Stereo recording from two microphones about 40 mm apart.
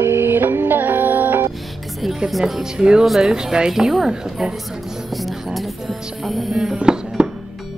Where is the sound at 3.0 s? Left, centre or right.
Centre.